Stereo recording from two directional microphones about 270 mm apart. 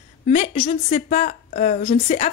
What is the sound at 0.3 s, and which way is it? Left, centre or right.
Speech, left.